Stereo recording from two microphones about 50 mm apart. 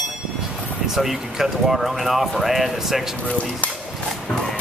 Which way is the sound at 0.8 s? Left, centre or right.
Centre.